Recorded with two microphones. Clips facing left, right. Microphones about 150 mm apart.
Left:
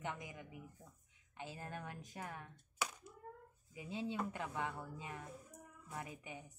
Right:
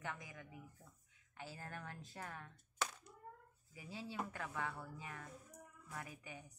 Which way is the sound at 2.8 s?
10° left (ahead or behind).